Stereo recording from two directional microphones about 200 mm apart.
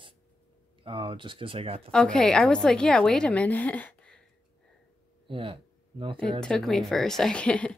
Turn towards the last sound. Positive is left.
turn(degrees=5)  # may be behind; listen again after turning